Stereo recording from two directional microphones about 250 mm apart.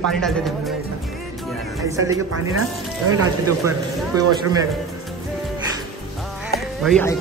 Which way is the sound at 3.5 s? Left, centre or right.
Centre.